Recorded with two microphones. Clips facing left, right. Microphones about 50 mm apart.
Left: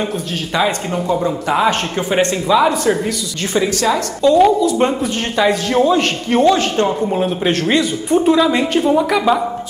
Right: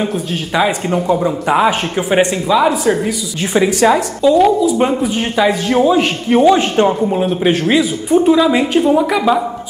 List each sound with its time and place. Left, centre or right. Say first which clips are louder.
0.6 s speech: right 3 dB; centre
4.2 s speech: left 1 dB; centre
6.5 s a man's voice: right 3 dB; centre
7.0 s speech: right 2 dB; centre